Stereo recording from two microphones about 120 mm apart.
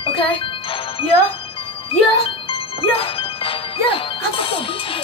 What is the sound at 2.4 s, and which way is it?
Speech, 50° left (ahead or behind).